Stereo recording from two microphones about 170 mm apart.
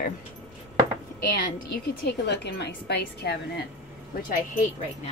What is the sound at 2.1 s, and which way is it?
A woman's voice, 80° left.